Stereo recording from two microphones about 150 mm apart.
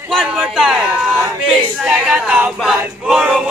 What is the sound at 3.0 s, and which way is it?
Music, 5° right (ahead or behind).